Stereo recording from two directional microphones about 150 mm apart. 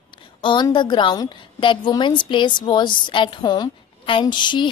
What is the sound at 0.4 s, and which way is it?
A woman's voice, 30° left (ahead or behind).